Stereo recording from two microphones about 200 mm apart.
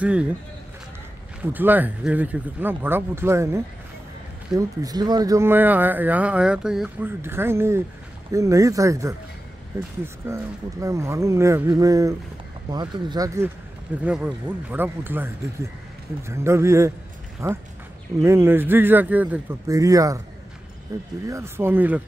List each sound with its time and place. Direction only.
0.0 s speech: 5° right (ahead or behind)
1.4 s speech: 10° right (ahead or behind)